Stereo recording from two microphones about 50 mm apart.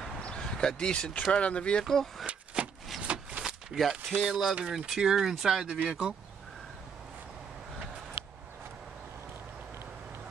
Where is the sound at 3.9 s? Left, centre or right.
Centre.